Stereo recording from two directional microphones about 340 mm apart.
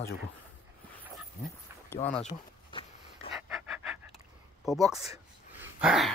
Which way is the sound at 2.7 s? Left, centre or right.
Centre.